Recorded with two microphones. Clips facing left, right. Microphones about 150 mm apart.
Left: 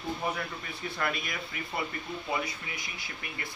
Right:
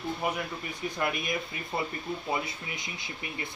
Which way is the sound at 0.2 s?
10° right (ahead or behind).